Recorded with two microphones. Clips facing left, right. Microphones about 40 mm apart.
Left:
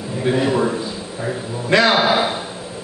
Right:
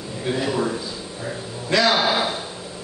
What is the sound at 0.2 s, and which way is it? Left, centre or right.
A man's voice, centre.